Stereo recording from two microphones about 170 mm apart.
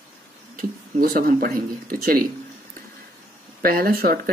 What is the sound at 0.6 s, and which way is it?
Speech, 55° right (ahead or behind).